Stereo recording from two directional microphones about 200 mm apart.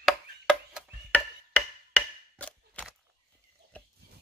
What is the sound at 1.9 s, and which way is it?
Chop, 5° left (ahead or behind).